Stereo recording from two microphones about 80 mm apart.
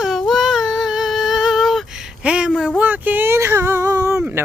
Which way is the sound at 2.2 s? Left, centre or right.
Centre.